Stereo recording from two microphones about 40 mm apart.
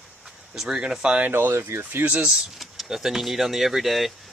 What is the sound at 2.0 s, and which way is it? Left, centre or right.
Speech, right.